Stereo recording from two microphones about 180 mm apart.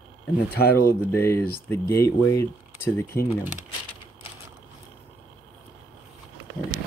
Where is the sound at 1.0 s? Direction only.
15° left (ahead or behind).